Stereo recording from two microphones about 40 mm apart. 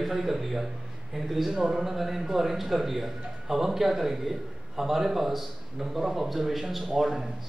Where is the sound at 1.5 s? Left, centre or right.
Centre.